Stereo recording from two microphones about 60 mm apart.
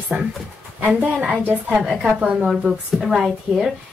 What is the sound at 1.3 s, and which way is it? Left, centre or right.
Speech, right.